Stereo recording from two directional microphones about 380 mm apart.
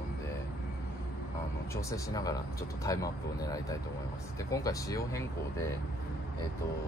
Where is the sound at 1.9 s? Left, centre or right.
Centre.